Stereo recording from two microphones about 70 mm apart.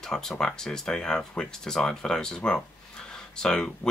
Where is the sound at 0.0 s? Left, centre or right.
Centre.